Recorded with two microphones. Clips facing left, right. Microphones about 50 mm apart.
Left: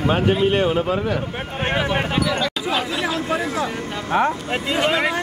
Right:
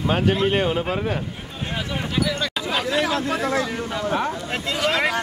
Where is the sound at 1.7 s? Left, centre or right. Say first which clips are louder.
Left 7 dB; left.